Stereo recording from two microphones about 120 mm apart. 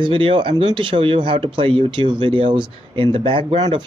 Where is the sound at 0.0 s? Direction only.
45° right (ahead or behind).